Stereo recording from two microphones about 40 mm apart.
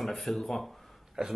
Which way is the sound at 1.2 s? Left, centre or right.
Centre.